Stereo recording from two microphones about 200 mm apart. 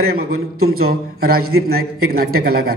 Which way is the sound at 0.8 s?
50° right (ahead or behind).